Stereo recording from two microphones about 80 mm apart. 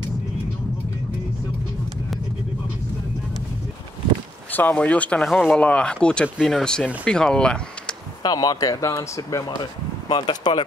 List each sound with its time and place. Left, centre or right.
4.5 s speech: left
5.2 s speech: centre
5.6 s speech: centre
8.2 s speech: left
9.5 s speech: left